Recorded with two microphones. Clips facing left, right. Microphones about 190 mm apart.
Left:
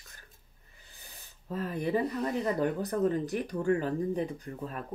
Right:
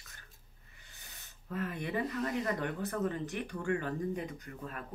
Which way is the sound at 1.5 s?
35° left (ahead or behind).